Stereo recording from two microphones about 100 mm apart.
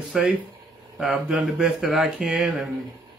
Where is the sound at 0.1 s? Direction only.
10° right (ahead or behind).